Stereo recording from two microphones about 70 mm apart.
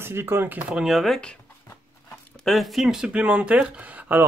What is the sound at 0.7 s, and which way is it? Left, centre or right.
Speech, centre.